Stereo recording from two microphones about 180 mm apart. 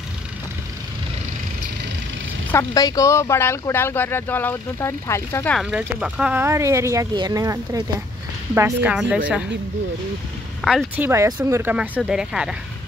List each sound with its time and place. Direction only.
2.5 s speech: 20° left (ahead or behind)
5.6 s speech: 5° right (ahead or behind)
10.6 s speech: centre (ahead or behind)
11.0 s speech: 15° right (ahead or behind)